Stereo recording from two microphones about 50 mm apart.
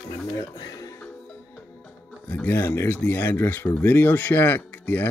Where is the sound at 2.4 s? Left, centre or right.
Left.